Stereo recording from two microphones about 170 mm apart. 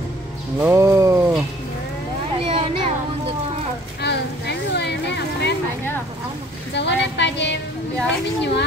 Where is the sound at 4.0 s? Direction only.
80° left.